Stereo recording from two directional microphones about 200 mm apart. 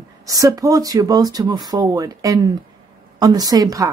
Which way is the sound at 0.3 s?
15° right (ahead or behind).